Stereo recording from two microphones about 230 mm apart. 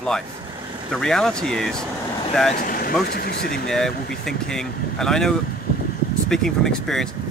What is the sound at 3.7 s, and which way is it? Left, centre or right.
Speech, centre.